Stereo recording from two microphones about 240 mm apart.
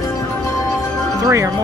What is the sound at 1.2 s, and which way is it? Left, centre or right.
Speech, centre.